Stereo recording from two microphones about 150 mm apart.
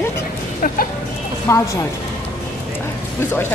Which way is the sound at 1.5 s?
20° left (ahead or behind).